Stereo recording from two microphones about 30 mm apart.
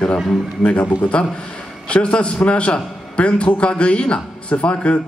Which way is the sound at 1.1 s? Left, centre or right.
Left.